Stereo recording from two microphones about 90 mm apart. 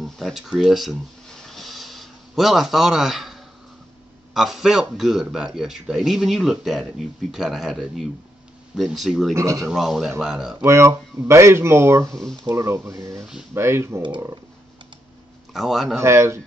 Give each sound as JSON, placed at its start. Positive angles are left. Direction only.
{"t": 0.0, "sound": "a sound", "side_deg": 0}
{"t": 4.3, "sound": "speech", "side_deg": 0}
{"t": 9.3, "sound": "speech", "side_deg": -35}
{"t": 9.7, "sound": "speech", "side_deg": -5}
{"t": 10.6, "sound": "speech", "side_deg": -30}
{"t": 15.5, "sound": "speech", "side_deg": 0}
{"t": 16.0, "sound": "speech", "side_deg": -30}